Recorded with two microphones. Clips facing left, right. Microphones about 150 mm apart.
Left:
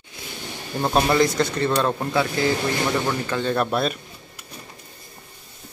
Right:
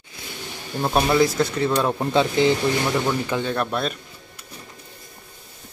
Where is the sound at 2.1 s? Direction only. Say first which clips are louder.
Right 5 dB; 20° right (ahead or behind).